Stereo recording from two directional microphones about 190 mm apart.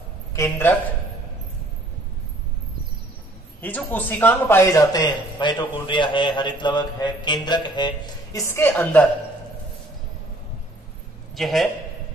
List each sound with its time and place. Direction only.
0.3 s a woman's voice: 15° left (ahead or behind)
3.6 s a woman's voice: 10° left (ahead or behind)
11.3 s a man's voice: centre (ahead or behind)